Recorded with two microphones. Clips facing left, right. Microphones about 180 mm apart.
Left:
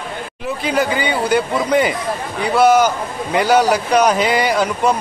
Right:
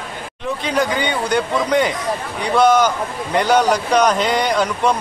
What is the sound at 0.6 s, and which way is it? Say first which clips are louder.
A man's voice: left 1 dB; 5° left (ahead or behind).